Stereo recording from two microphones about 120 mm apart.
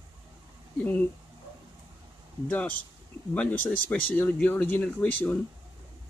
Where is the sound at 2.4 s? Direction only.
10° left (ahead or behind).